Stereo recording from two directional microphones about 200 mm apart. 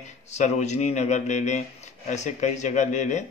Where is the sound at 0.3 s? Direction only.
35° left (ahead or behind).